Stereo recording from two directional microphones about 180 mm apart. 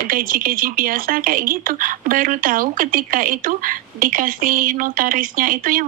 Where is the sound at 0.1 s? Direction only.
50° right (ahead or behind).